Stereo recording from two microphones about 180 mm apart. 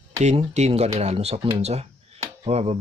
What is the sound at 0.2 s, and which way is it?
Speech, 40° right (ahead or behind).